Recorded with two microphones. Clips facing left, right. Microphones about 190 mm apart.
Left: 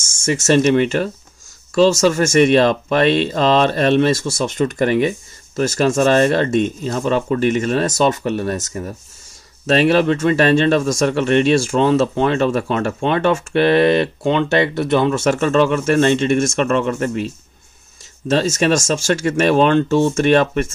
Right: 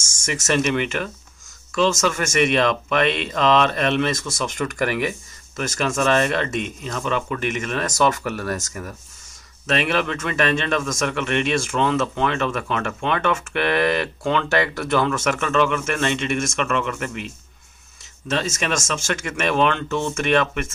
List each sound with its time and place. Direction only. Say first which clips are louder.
0.2 s a man's voice: left 7 dB; 30° left (ahead or behind)
18.3 s a man's voice: left 8 dB; 35° left (ahead or behind)